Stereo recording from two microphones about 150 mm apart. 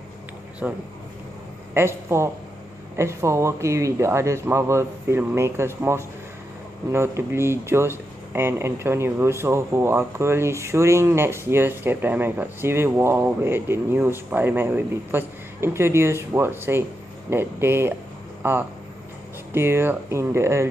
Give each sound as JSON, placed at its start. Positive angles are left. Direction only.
{"t": 0.6, "sound": "speech", "side_deg": -10}